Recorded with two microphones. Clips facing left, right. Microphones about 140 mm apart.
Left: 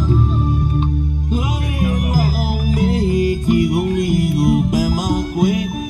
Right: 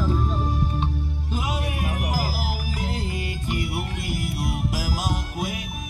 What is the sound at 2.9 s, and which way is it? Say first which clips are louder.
Music: left 14 dB; 35° left (ahead or behind).